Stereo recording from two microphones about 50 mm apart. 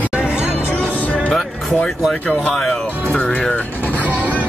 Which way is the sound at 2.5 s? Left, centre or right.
Centre.